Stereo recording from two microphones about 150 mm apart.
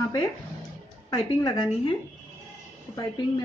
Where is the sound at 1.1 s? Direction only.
30° left (ahead or behind).